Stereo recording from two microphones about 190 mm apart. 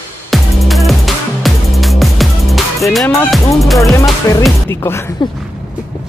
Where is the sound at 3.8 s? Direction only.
15° left (ahead or behind).